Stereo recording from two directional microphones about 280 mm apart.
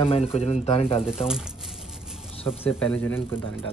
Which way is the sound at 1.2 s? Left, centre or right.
Centre.